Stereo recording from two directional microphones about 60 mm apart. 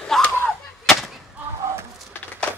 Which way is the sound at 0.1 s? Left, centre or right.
Centre.